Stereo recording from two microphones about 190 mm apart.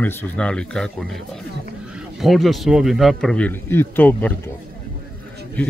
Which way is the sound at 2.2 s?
Centre (ahead or behind).